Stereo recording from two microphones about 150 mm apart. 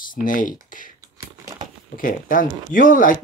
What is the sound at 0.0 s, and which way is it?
Speech, 65° left (ahead or behind).